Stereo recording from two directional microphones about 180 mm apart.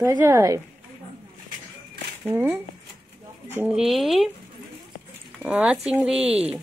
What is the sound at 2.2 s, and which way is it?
Speech, 10° right (ahead or behind).